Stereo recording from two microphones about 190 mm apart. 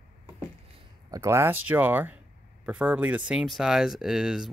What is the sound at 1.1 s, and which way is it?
Speech, 15° right (ahead or behind).